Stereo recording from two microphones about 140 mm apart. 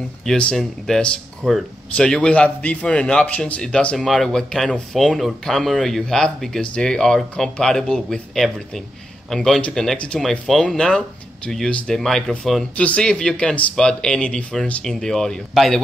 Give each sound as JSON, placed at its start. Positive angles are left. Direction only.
{"t": 0.2, "sound": "speech", "side_deg": 5}